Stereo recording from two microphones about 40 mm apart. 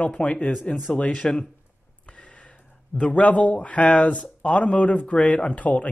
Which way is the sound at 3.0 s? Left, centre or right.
Left.